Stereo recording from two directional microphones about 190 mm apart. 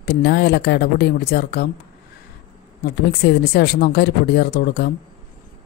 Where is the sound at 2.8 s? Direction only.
55° left (ahead or behind).